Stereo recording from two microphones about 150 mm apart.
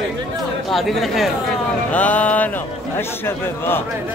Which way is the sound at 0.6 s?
Centre (ahead or behind).